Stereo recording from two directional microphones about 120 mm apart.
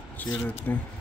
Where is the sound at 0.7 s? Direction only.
20° left (ahead or behind).